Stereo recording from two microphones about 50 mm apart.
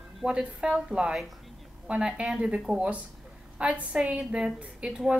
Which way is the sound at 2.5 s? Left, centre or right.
Centre.